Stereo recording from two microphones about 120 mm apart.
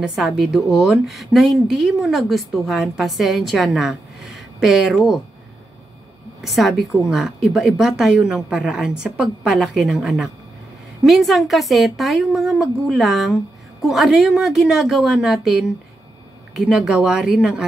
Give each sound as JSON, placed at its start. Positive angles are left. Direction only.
{"t": 0.0, "sound": "a woman's voice", "side_deg": -5}
{"t": 6.4, "sound": "a woman's voice", "side_deg": 0}